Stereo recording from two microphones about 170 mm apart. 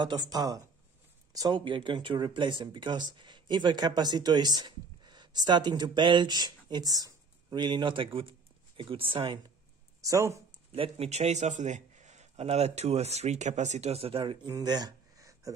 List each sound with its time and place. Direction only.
0.0 s speech: 25° right (ahead or behind)
10.0 s speech: 20° right (ahead or behind)
10.7 s a man's voice: 35° right (ahead or behind); by 15.5 s 20° right (ahead or behind)